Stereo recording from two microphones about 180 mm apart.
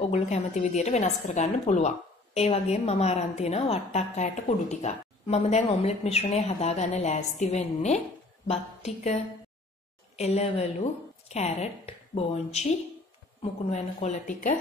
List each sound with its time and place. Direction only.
0.1 s a woman's voice: 40° left (ahead or behind)